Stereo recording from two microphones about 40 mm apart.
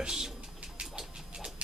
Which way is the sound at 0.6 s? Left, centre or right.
Centre.